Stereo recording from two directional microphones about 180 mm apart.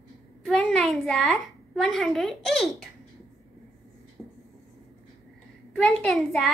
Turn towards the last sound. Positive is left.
turn(degrees=0)  # may be behind; listen again after turning